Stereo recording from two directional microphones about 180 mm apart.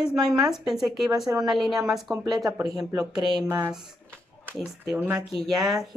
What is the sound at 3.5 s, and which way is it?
Speech, 20° right (ahead or behind).